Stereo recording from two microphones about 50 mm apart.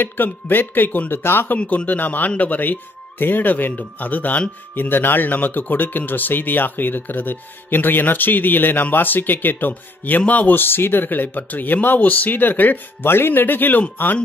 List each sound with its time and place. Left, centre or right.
0.0 s speech: left
1.6 s a man's voice: left
1.9 s speech: left
10.6 s speech: left